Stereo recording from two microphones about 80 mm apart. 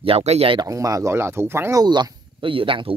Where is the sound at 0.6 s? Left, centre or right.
Right.